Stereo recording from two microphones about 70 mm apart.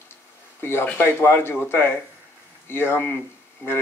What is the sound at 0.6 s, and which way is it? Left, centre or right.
Speech, left.